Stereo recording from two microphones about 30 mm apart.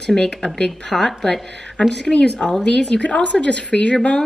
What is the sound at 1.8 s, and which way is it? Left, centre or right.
A woman's voice, left.